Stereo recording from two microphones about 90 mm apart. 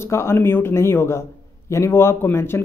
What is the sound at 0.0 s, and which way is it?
Speech, 30° left (ahead or behind).